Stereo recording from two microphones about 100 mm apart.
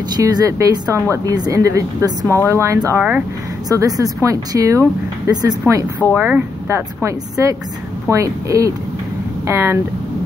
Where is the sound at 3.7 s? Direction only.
35° right (ahead or behind).